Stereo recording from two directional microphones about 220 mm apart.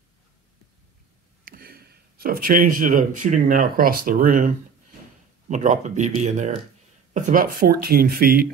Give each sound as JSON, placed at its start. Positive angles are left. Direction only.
{"t": 1.4, "sound": "speech", "side_deg": -40}
{"t": 5.5, "sound": "speech", "side_deg": -35}